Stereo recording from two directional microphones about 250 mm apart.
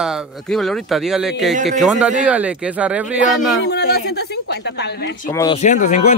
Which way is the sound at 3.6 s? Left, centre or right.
Left.